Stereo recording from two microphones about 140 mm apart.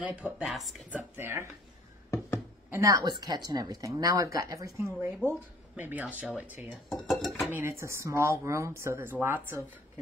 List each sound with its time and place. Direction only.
0.0 s speech: 10° right (ahead or behind)
0.8 s speech: 15° right (ahead or behind)
2.0 s a sound: 15° left (ahead or behind)
2.7 s a woman's voice: 25° right (ahead or behind)
7.1 s dishes: centre (ahead or behind)
7.5 s speech: 15° right (ahead or behind)